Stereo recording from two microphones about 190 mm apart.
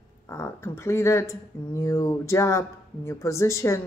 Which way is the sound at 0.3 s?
15° left (ahead or behind).